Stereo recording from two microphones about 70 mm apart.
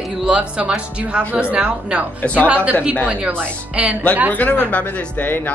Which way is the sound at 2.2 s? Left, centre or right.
Centre.